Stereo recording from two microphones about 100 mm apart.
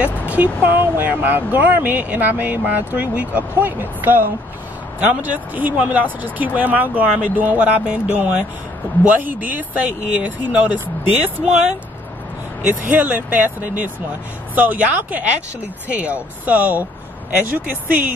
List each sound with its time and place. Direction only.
0.3 s speech: 15° right (ahead or behind)
12.6 s speech: 15° right (ahead or behind)